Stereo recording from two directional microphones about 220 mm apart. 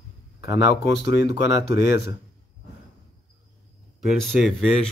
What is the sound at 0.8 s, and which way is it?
Speech, 55° left (ahead or behind).